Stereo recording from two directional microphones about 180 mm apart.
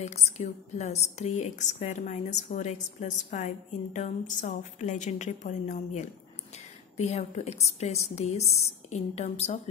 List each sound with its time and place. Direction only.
0.0 s a woman's voice: 40° left (ahead or behind)